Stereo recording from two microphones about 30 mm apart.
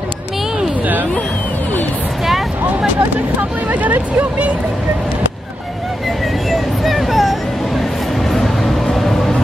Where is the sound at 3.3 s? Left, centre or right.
Right.